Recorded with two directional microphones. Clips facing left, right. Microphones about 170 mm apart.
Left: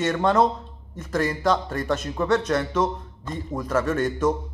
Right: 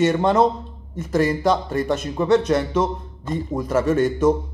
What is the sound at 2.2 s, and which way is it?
A man's voice, 15° right (ahead or behind).